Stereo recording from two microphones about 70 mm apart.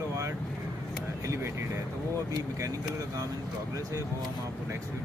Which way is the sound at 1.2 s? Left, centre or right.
Right.